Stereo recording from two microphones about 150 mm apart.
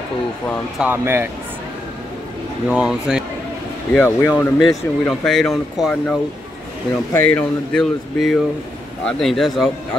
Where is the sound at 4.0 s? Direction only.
15° left (ahead or behind).